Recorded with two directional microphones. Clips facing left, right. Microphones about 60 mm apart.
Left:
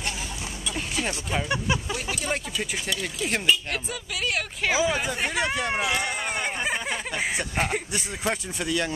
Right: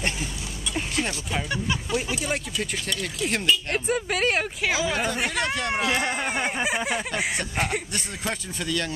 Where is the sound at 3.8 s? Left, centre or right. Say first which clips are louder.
Right 7 dB; right.